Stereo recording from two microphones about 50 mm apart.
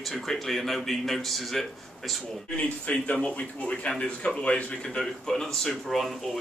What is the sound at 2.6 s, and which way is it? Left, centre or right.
Speech, left.